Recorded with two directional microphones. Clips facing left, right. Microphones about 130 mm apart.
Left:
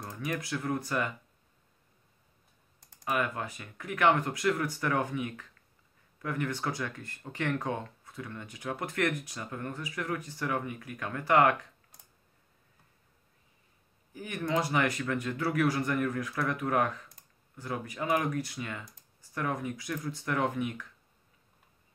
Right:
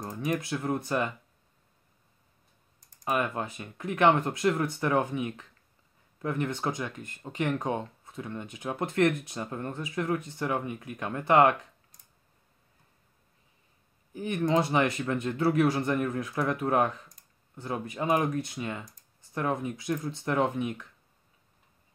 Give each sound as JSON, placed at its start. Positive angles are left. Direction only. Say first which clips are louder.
{"t": 0.0, "sound": "speech", "louder": "right 5 dB", "side_deg": -20}
{"t": 3.1, "sound": "speech", "louder": "right 2 dB", "side_deg": -25}
{"t": 14.1, "sound": "speech", "louder": "right 5 dB", "side_deg": -25}